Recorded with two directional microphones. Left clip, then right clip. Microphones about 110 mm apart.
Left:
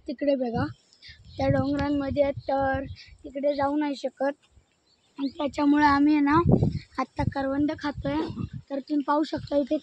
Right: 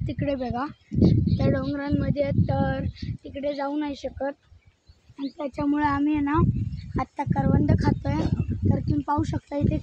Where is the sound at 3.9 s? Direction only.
80° left.